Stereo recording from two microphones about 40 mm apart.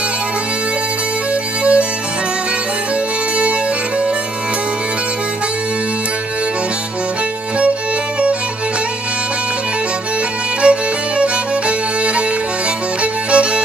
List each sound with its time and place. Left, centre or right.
1.6 s music: right
10.6 s music: right